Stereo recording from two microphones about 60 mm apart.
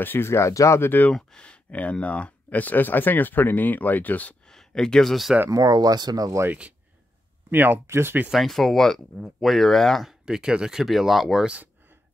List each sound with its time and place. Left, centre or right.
0.0 s speech: left
0.7 s speech: left
1.1 s speech: centre
4.5 s a sound: centre
5.5 s speech: right
7.5 s speech: right
7.8 s speech: right
8.3 s speech: centre
10.0 s speech: centre